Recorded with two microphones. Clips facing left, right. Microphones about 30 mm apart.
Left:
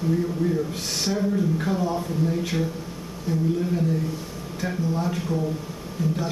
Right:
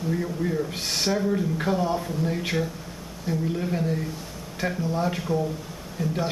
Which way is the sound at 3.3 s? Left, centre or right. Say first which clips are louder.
Left 3 dB; centre.